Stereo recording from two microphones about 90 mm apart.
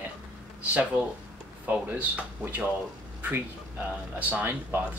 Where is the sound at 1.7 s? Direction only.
15° right (ahead or behind).